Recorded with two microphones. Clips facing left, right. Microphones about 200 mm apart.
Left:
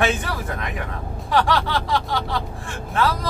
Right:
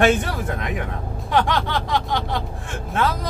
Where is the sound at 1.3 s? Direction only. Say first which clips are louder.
Left 1 dB; 20° right (ahead or behind).